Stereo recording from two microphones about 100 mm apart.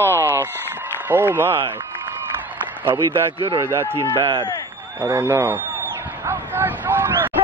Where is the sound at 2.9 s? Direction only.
35° right (ahead or behind).